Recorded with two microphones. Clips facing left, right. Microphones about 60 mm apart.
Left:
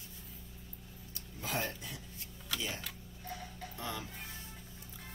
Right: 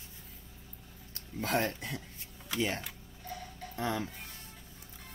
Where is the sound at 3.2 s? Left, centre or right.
Centre.